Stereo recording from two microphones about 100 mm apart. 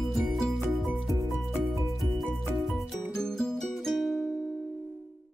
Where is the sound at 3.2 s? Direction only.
5° left (ahead or behind).